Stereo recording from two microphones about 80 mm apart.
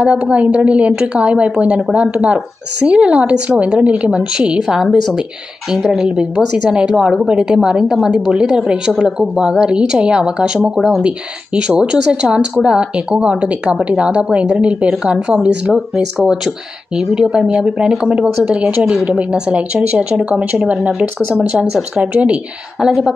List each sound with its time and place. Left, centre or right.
0.0 s a woman's voice: centre